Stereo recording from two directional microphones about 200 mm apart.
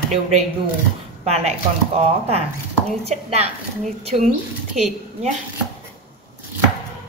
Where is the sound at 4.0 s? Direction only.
30° right (ahead or behind).